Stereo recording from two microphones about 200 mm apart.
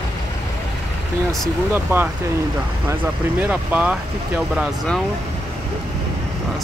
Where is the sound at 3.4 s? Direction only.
10° right (ahead or behind).